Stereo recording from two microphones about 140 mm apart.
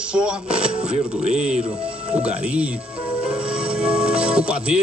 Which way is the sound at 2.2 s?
10° right (ahead or behind).